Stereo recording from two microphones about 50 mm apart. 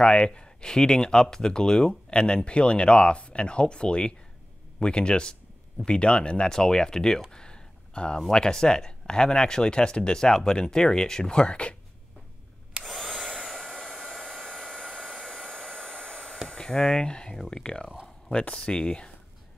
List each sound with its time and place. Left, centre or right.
0.0 s speech: centre
12.8 s a sound: centre
13.5 s hair dryer: centre
16.4 s speech: centre